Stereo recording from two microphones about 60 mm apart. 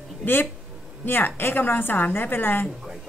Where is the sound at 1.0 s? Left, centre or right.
Left.